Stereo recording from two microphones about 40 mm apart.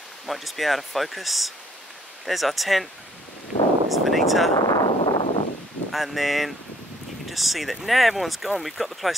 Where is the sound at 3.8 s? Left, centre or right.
Centre.